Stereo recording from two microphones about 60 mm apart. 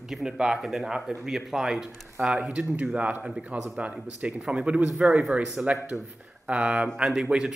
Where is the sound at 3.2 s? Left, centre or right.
Centre.